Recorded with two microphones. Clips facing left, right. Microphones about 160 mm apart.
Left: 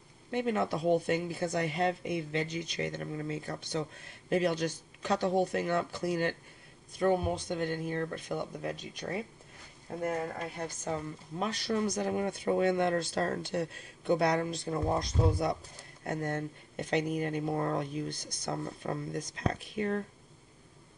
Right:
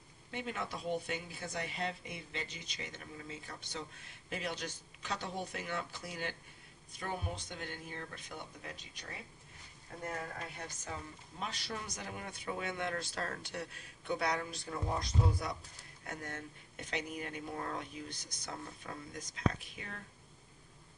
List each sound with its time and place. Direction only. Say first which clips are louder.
0.3 s speech: left 11 dB; 50° left (ahead or behind)
1.5 s speech: left 8 dB; 60° left (ahead or behind); by 5.6 s 40° left (ahead or behind)
5.6 s speech: left 10 dB; 50° left (ahead or behind)
7.0 s speech: left 13 dB; 55° left (ahead or behind)
7.3 s speech: left 12 dB; 45° left (ahead or behind)
10.0 s speech: left 9 dB; 25° left (ahead or behind)
10.8 s speech: left 10 dB; 50° left (ahead or behind); by 15.5 s 25° left (ahead or behind)
16.0 s speech: left 11 dB; 40° left (ahead or behind)